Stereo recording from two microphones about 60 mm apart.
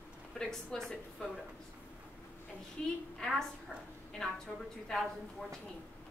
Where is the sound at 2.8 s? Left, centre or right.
Centre.